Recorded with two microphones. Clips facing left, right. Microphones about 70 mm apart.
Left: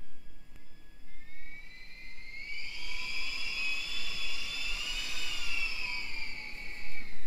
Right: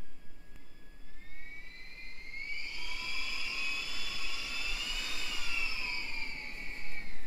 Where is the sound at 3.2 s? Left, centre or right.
Right.